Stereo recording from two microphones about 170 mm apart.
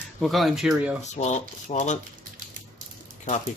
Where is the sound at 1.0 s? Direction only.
45° left (ahead or behind).